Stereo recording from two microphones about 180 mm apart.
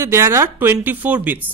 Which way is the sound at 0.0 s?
15° right (ahead or behind).